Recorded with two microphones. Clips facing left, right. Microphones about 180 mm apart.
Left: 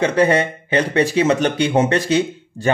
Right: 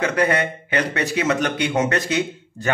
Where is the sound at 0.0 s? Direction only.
30° left (ahead or behind).